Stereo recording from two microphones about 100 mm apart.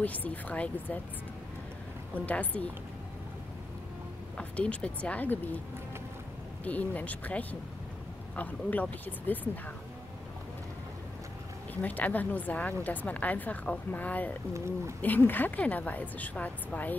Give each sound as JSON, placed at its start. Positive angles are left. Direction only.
{"t": 0.0, "sound": "speech", "side_deg": 15}
{"t": 2.2, "sound": "speech", "side_deg": 15}
{"t": 4.4, "sound": "speech", "side_deg": 15}
{"t": 6.6, "sound": "speech", "side_deg": 15}
{"t": 11.7, "sound": "speech", "side_deg": 15}